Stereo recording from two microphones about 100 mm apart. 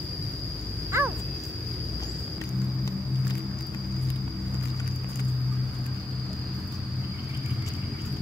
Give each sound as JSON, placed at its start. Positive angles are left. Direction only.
{"t": 0.9, "sound": "owl", "side_deg": -25}